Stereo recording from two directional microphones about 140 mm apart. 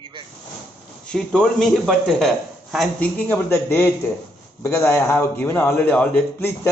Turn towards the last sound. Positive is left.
turn(degrees=15)  # may be behind; listen again after turning